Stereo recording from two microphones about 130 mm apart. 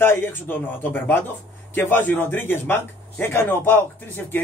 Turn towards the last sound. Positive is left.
turn(degrees=15)  # may be behind; listen again after turning